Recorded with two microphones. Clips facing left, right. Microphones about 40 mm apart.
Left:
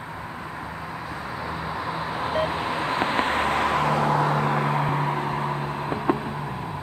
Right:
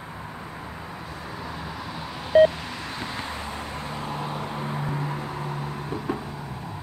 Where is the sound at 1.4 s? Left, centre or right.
Left.